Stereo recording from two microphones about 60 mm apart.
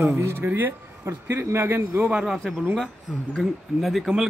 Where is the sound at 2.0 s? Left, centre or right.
Right.